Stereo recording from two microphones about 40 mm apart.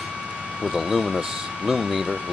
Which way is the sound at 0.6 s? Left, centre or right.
Centre.